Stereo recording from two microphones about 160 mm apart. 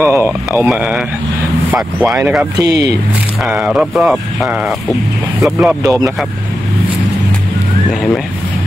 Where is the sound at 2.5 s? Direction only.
20° right (ahead or behind).